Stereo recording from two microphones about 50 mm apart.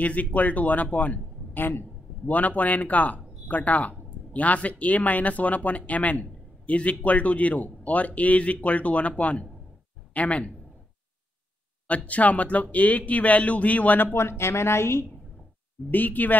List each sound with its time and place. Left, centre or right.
0.0 s a man's voice: left
12.1 s speech: left
14.1 s speech: left
15.9 s speech: left